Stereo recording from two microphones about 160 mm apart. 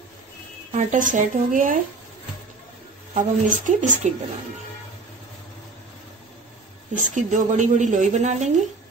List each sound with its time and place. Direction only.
0.7 s speech: 50° right (ahead or behind)
3.2 s speech: 50° right (ahead or behind)
7.1 s speech: 50° right (ahead or behind)